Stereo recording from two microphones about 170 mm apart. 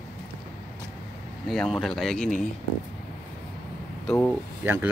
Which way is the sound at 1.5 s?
Centre (ahead or behind).